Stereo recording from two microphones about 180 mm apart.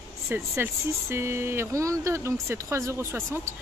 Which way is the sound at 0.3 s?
15° right (ahead or behind).